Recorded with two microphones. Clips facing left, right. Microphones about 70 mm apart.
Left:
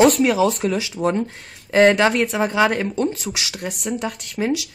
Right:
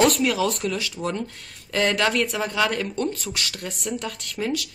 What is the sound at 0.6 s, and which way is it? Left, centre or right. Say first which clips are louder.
Speech: left 6 dB; left.